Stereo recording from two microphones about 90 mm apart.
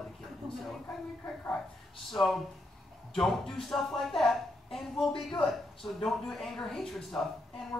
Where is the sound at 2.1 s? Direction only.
5° left (ahead or behind).